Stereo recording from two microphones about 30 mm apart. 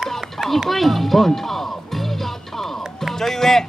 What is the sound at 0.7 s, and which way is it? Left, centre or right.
Speech, centre.